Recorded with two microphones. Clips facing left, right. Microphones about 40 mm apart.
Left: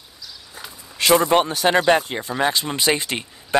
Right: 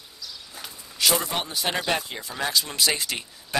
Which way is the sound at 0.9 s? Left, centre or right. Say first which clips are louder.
Left 9 dB; left.